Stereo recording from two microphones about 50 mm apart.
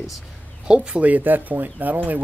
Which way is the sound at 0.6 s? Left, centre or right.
Right.